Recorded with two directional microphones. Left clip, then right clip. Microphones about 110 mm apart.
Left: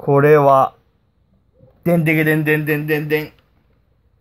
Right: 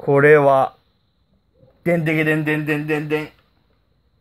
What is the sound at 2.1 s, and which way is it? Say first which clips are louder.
Speech: left 5 dB; 10° left (ahead or behind).